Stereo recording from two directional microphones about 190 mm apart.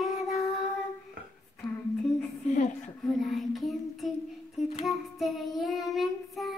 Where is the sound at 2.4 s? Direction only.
40° left (ahead or behind).